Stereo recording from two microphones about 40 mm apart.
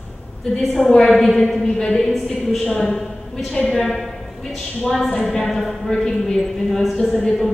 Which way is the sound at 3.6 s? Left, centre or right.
Centre.